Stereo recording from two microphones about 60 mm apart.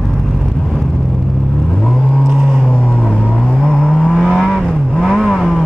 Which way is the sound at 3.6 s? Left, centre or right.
Centre.